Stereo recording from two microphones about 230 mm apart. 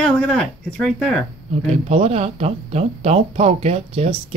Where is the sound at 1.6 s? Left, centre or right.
Right.